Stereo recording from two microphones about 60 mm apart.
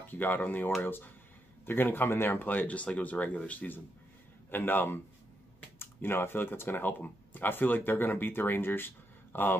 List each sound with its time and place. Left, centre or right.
0.1 s speech: left